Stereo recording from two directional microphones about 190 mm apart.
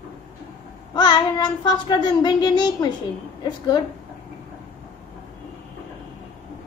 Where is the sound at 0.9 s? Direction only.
20° left (ahead or behind).